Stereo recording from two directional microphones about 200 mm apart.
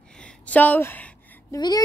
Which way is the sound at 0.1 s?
5° left (ahead or behind).